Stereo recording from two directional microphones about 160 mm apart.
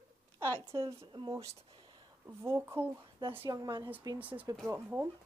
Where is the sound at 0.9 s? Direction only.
30° right (ahead or behind).